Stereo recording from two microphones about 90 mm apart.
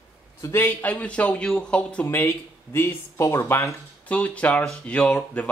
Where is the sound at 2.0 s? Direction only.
25° left (ahead or behind).